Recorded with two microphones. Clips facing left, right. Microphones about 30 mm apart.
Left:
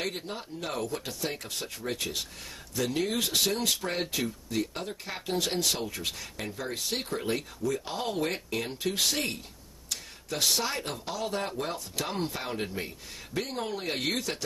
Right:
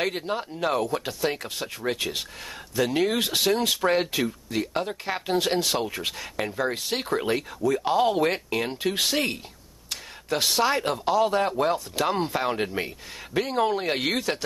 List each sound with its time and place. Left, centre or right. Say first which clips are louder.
0.0 s speech: right 7 dB; right
3.9 s speech: right 7 dB; right